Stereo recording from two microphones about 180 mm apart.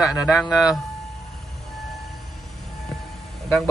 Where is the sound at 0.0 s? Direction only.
Centre (ahead or behind).